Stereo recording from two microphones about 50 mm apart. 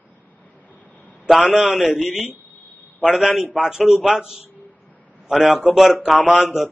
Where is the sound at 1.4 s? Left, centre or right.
Centre.